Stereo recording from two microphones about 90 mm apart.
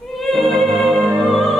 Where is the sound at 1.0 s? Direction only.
15° right (ahead or behind).